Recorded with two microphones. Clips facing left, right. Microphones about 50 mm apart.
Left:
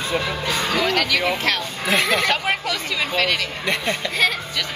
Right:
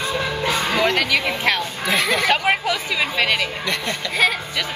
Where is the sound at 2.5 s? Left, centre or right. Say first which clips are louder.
Right 3 dB; centre.